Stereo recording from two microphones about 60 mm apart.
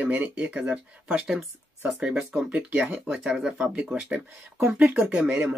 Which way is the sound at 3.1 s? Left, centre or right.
Centre.